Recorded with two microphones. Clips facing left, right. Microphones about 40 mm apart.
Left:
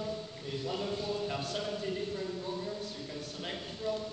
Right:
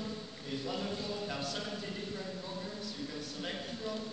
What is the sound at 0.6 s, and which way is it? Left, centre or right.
Speech, centre.